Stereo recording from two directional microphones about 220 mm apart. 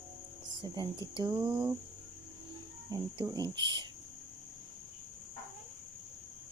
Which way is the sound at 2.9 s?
15° right (ahead or behind).